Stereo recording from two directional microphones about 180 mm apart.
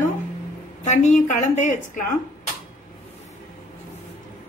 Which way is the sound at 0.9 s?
40° left (ahead or behind).